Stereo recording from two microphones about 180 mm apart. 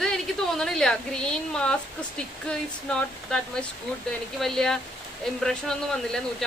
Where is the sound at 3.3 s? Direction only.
5° left (ahead or behind).